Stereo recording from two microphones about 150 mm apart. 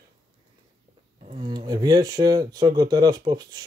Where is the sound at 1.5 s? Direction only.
25° right (ahead or behind).